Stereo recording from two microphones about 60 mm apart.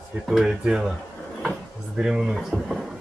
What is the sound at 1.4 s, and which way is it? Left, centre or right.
Drawer open or close, centre.